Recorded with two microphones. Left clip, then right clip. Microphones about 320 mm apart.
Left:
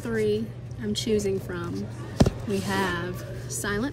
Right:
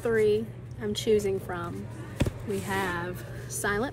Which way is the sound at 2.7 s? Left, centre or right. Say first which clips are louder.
Left 2 dB; centre.